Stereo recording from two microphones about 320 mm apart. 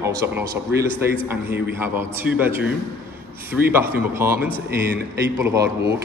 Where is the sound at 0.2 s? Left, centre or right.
Centre.